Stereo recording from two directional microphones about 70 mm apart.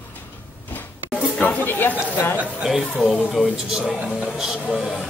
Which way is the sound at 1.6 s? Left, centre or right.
Left.